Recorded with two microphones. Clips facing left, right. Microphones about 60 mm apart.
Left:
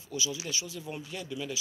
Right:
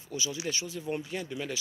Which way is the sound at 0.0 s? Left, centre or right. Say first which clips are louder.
Right 1 dB; right.